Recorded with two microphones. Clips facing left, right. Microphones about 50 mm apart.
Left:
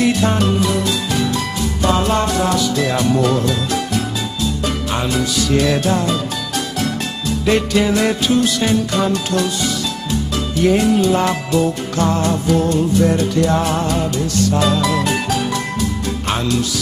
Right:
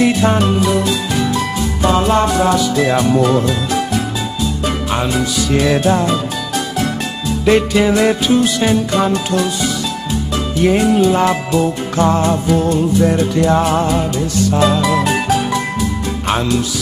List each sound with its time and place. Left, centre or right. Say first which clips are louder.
0.0 s music: right 3 dB; centre
7.4 s music: right 4 dB; centre
10.6 s music: right 2 dB; right